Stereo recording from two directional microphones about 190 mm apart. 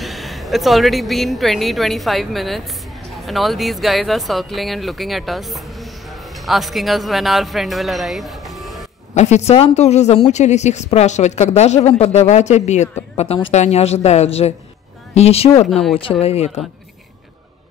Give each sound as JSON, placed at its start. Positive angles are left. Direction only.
{"t": 0.0, "sound": "speech", "side_deg": 0}
{"t": 9.1, "sound": "a woman's voice", "side_deg": 35}
{"t": 15.7, "sound": "speech", "side_deg": 0}
{"t": 16.0, "sound": "a woman's voice", "side_deg": 30}